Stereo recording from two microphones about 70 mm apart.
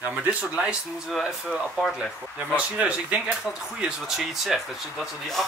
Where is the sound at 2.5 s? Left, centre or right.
Centre.